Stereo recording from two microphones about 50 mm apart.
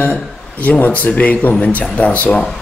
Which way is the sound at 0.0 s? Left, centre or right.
Left.